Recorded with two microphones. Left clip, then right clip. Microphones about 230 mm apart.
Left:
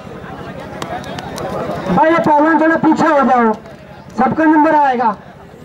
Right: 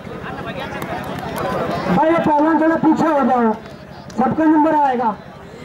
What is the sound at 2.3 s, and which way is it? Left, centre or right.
A man's voice, centre.